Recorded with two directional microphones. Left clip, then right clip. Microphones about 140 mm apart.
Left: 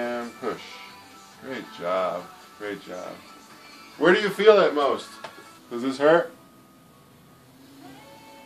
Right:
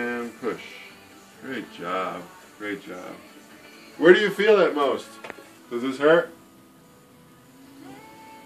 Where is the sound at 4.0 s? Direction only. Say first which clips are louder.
Right 3 dB; 75° left (ahead or behind).